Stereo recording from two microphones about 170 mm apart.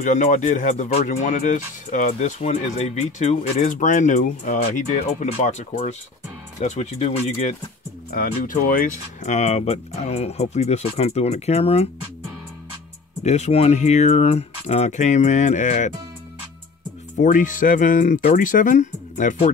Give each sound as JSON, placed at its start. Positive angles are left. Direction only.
{"t": 0.0, "sound": "speech", "side_deg": 50}
{"t": 8.1, "sound": "speech", "side_deg": 55}
{"t": 13.2, "sound": "speech", "side_deg": 40}
{"t": 17.2, "sound": "speech", "side_deg": 50}